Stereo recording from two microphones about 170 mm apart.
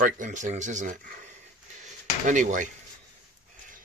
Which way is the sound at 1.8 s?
45° right (ahead or behind).